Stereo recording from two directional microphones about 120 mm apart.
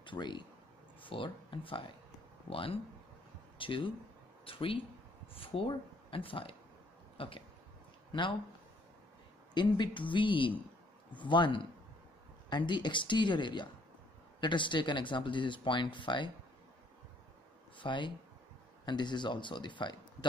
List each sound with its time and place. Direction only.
0.0 s speech: 40° left (ahead or behind)
7.2 s a sound: 50° left (ahead or behind)
8.1 s speech: 40° left (ahead or behind)
9.5 s speech: 40° left (ahead or behind)
17.7 s speech: 40° left (ahead or behind)